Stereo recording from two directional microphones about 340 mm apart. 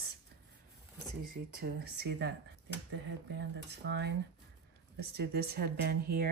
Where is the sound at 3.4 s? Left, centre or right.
Right.